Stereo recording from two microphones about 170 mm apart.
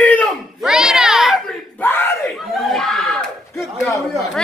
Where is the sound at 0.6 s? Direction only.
5° right (ahead or behind).